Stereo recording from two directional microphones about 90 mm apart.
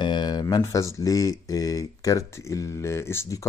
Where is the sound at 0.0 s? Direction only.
55° left (ahead or behind).